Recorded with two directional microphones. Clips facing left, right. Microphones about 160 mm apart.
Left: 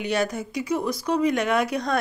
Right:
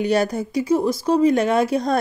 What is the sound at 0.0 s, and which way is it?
Speech, 35° right (ahead or behind).